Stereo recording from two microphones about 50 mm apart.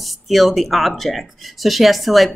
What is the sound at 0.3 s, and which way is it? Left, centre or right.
Speech, centre.